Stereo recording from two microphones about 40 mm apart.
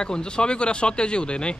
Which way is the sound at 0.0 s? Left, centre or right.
Left.